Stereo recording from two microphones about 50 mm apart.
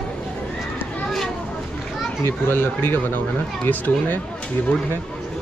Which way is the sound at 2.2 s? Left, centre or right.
Left.